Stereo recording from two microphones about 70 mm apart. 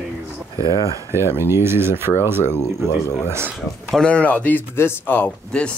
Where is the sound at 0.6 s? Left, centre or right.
Left.